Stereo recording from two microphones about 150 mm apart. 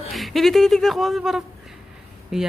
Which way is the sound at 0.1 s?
Centre (ahead or behind).